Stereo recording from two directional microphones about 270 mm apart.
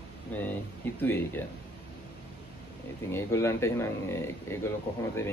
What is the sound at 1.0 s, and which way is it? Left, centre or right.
Speech, centre.